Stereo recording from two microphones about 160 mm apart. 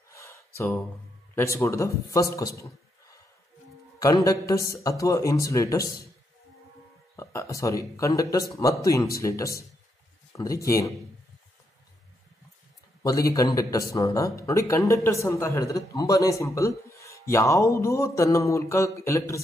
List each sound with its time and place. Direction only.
0.1 s a sound: 20° left (ahead or behind)
1.3 s a man's voice: 15° left (ahead or behind)
7.2 s a man's voice: 20° left (ahead or behind)
13.0 s a man's voice: 20° left (ahead or behind)